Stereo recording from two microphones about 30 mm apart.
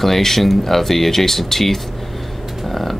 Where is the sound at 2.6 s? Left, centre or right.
Centre.